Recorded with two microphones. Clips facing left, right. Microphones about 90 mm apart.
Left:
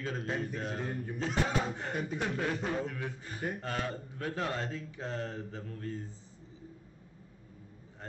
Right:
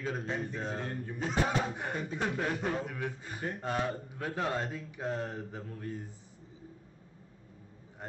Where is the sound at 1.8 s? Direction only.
15° right (ahead or behind).